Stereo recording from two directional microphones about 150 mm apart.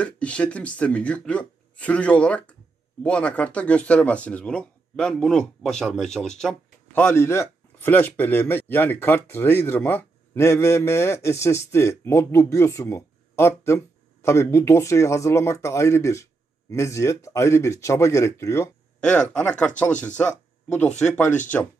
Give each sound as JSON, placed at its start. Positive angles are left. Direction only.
{"t": 0.0, "sound": "speech", "side_deg": 10}
{"t": 18.9, "sound": "speech", "side_deg": 10}